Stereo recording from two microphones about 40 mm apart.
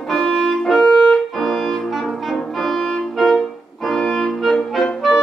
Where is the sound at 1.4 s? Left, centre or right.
Centre.